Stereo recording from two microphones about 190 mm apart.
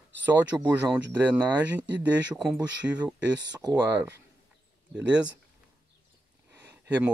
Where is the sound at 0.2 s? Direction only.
10° right (ahead or behind).